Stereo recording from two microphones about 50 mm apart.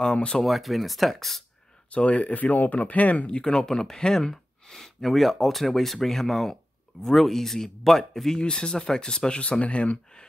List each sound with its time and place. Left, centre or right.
0.0 s speech: centre
0.4 s speech: centre
1.9 s speech: left; by 8.1 s centre
8.4 s speech: centre